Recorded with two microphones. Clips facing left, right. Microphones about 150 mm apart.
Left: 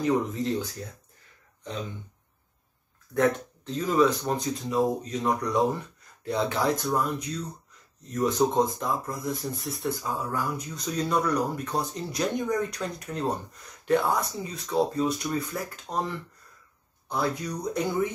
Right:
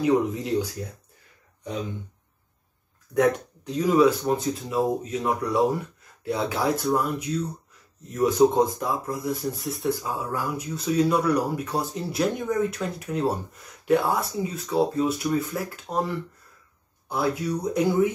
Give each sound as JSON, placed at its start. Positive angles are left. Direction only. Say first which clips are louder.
{"t": 0.0, "sound": "speech", "louder": "right 3 dB", "side_deg": -10}
{"t": 3.2, "sound": "speech", "louder": "right 3 dB", "side_deg": -10}